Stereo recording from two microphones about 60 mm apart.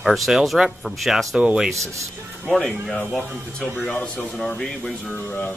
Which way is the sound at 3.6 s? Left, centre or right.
Centre.